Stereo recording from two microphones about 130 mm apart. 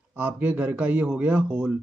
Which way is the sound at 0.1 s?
10° right (ahead or behind).